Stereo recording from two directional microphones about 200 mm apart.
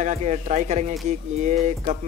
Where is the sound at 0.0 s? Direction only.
35° right (ahead or behind).